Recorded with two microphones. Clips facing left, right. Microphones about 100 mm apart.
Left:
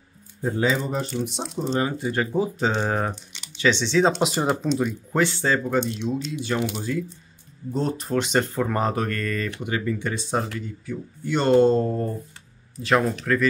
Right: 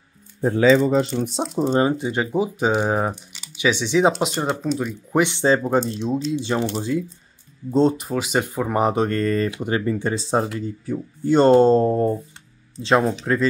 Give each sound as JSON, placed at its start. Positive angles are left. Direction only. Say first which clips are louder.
{"t": 0.4, "sound": "speech", "louder": "right 8 dB", "side_deg": -80}
{"t": 1.4, "sound": "speech", "louder": "right 7 dB", "side_deg": -5}
{"t": 1.8, "sound": "speech", "louder": "right 2 dB", "side_deg": -25}
{"t": 4.2, "sound": "speech", "louder": "even", "side_deg": 0}
{"t": 5.1, "sound": "speech", "louder": "right 5 dB", "side_deg": -20}
{"t": 5.6, "sound": "speech", "louder": "right 3 dB", "side_deg": -35}
{"t": 8.0, "sound": "speech", "louder": "even", "side_deg": -5}